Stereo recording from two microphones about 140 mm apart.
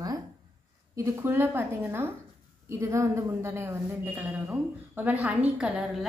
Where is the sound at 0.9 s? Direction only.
15° right (ahead or behind).